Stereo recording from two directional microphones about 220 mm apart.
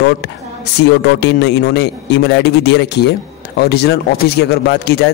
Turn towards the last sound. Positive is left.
turn(degrees=50)  # may be behind; listen again after turning